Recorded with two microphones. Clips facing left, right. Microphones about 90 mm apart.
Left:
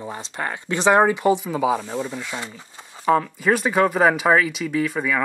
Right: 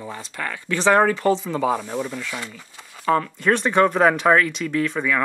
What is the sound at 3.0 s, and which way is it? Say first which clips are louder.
Speech: left 1 dB; 10° left (ahead or behind).